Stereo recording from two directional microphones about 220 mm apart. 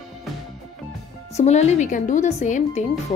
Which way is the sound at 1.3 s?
30° left (ahead or behind).